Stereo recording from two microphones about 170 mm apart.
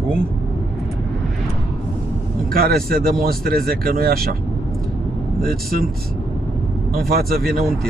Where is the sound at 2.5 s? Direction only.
60° right (ahead or behind).